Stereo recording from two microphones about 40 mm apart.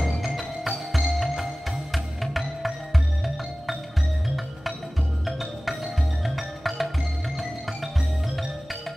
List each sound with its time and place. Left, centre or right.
0.0 s music: centre
5.2 s music: centre